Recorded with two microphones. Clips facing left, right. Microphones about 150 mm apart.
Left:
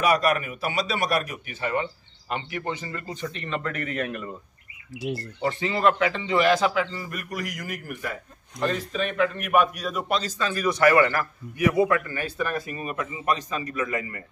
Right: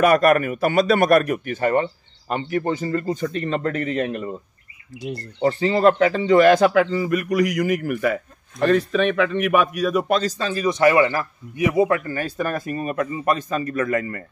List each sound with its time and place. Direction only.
0.0 s a man's voice: 55° right (ahead or behind); by 4.3 s 25° right (ahead or behind)
4.9 s speech: centre (ahead or behind)
5.4 s speech: 35° right (ahead or behind); by 8.2 s 90° right
8.5 s a man's voice: 70° right (ahead or behind)
10.0 s a man's voice: 45° right (ahead or behind); by 12.0 s 20° right (ahead or behind)
12.1 s a man's voice: 45° right (ahead or behind)